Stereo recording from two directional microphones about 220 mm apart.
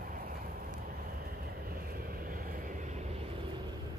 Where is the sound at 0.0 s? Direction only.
40° right (ahead or behind).